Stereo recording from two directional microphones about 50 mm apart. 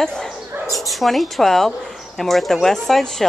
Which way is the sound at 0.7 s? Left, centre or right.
Centre.